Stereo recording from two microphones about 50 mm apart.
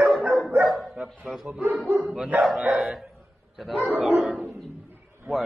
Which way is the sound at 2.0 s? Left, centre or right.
Centre.